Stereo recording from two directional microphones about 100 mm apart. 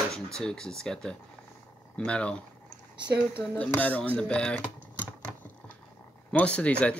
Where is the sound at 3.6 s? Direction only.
15° left (ahead or behind).